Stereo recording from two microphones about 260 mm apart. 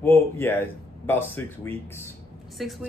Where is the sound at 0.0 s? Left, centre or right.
Centre.